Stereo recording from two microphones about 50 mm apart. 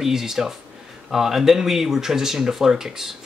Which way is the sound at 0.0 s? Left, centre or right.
Centre.